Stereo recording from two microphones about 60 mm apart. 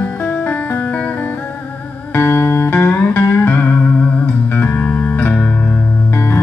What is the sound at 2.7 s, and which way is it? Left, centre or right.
Music, left.